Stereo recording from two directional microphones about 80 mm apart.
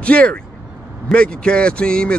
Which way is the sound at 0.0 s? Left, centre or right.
Centre.